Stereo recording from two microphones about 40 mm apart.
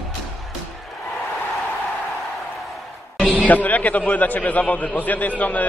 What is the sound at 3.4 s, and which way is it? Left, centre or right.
A man's voice, left.